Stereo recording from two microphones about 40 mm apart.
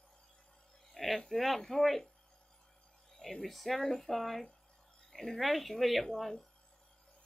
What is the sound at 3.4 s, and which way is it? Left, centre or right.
Speech, centre.